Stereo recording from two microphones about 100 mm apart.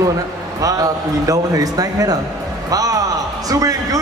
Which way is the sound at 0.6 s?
35° right (ahead or behind).